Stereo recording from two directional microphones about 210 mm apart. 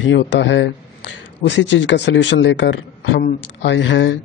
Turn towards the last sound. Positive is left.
turn(degrees=60)  # may be behind; listen again after turning